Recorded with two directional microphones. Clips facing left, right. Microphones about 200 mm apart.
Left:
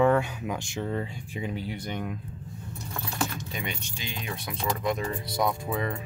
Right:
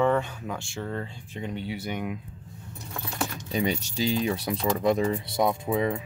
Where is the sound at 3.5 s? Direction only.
35° right (ahead or behind); by 5.9 s 20° right (ahead or behind).